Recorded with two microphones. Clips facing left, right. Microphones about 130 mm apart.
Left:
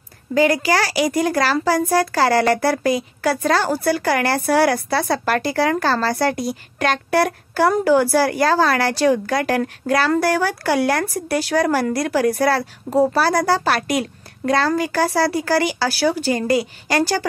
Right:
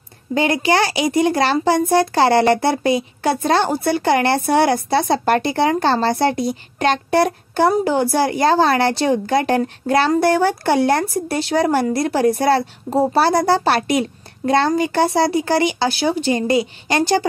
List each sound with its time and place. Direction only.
0.3 s a child's voice: 25° right (ahead or behind)